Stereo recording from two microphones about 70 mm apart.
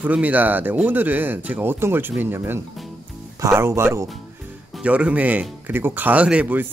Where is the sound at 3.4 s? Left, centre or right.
Right.